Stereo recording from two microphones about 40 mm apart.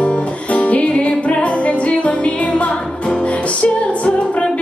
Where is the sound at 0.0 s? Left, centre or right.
Left.